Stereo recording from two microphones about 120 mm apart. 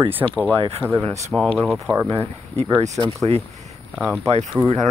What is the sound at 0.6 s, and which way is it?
Speech, 50° right (ahead or behind).